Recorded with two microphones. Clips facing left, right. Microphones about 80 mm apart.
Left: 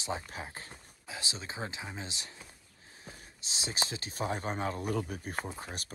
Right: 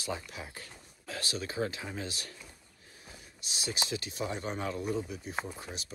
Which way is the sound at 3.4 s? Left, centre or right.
Left.